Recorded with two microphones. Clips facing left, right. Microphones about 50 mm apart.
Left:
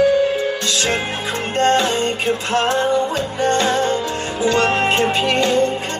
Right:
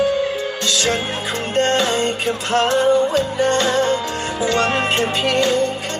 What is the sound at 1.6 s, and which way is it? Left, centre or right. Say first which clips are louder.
Music: left 1 dB; left.